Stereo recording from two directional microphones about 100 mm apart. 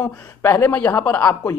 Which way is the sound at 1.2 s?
35° left (ahead or behind).